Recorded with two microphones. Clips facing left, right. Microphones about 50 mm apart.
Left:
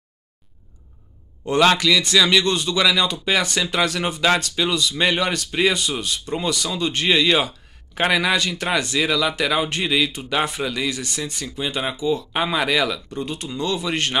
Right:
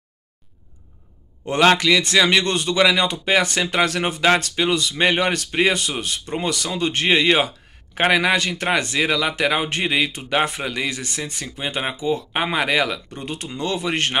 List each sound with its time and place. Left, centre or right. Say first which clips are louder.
1.4 s speech: right 1 dB; right